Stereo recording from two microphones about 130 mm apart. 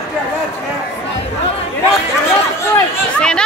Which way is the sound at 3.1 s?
5° left (ahead or behind).